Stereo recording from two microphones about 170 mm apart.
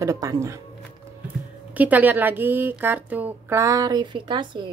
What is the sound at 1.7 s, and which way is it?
A woman's voice, 10° right (ahead or behind).